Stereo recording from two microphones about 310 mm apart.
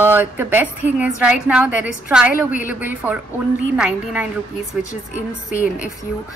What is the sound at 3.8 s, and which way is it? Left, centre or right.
Speech, centre.